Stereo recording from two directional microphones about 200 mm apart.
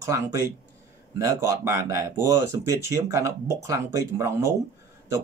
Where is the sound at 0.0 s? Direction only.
15° right (ahead or behind).